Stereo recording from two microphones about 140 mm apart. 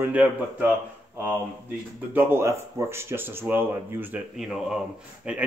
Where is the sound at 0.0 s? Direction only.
10° right (ahead or behind).